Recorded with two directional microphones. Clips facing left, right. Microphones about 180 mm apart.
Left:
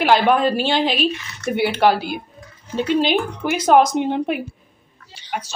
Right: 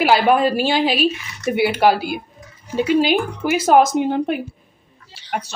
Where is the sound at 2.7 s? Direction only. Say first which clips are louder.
Right 2 dB; 10° right (ahead or behind).